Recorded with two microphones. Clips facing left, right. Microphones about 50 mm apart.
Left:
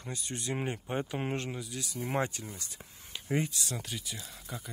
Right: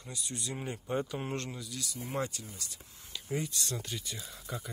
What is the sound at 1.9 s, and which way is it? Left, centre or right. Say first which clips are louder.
Speech: left 4 dB; left.